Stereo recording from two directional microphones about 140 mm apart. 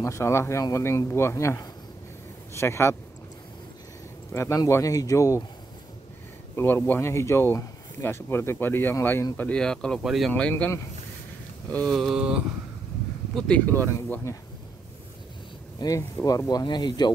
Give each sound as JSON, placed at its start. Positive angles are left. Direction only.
{"t": 0.0, "sound": "speech", "side_deg": 20}
{"t": 4.3, "sound": "speech", "side_deg": 20}
{"t": 6.5, "sound": "speech", "side_deg": 15}
{"t": 10.5, "sound": "speech", "side_deg": 20}
{"t": 11.7, "sound": "a sound", "side_deg": 5}
{"t": 13.3, "sound": "speech", "side_deg": 5}
{"t": 15.8, "sound": "speech", "side_deg": 20}